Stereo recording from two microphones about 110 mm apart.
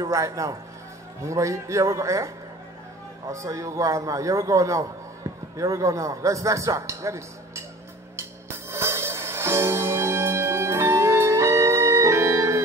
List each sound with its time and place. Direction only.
0.0 s a man's voice: 30° right (ahead or behind)
8.5 s music: 25° right (ahead or behind)